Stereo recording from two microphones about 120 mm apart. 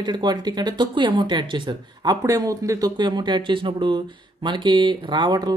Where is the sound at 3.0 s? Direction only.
40° right (ahead or behind).